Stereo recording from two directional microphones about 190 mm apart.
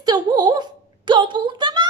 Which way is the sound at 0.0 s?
20° right (ahead or behind).